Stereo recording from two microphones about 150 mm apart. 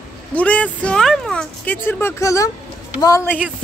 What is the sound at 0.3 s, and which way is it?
Speech, 10° left (ahead or behind).